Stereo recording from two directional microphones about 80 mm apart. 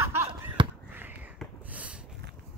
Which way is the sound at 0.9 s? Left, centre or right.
Right.